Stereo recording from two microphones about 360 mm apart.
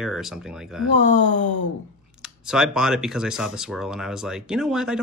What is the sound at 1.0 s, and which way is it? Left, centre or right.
Speech, centre.